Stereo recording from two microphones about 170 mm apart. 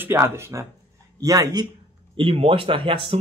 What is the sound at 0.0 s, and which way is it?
A man's voice, 15° right (ahead or behind).